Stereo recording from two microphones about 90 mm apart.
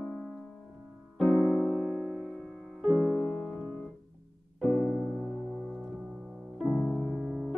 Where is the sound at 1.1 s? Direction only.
10° left (ahead or behind).